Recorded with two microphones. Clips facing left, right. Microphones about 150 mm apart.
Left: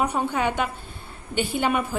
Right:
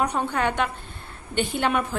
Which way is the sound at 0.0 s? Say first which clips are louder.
Even; 5° left (ahead or behind).